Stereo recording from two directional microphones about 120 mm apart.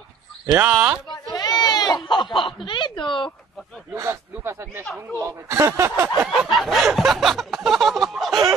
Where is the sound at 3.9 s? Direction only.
25° right (ahead or behind).